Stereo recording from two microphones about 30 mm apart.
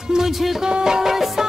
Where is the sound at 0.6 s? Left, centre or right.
Right.